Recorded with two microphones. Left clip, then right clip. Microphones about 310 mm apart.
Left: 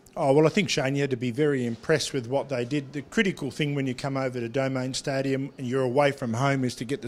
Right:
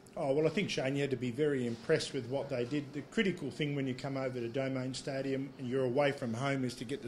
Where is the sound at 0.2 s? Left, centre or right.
Left.